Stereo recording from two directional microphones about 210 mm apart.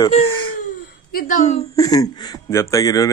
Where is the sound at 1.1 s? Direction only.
40° left (ahead or behind).